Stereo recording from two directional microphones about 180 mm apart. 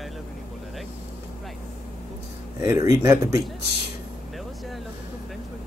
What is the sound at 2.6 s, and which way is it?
Speech, 15° right (ahead or behind).